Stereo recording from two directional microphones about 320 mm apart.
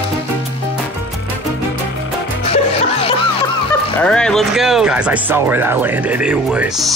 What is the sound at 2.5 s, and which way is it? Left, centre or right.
Music, centre.